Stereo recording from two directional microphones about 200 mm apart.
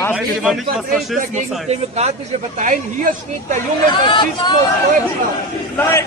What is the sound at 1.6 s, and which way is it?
Speech, 35° right (ahead or behind).